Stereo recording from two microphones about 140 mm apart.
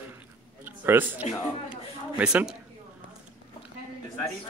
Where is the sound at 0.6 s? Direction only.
15° right (ahead or behind).